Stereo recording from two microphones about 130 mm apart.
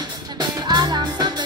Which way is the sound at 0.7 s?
35° right (ahead or behind).